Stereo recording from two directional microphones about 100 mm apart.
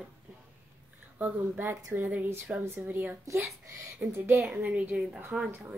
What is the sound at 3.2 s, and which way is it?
A woman's voice, 30° right (ahead or behind).